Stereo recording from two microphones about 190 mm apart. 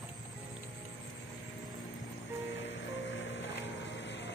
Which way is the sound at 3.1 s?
70° left (ahead or behind).